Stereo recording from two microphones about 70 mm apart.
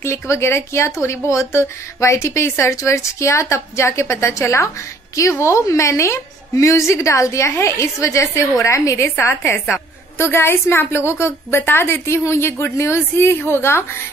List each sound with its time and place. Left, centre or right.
0.0 s a woman's voice: left
9.0 s a woman's voice: left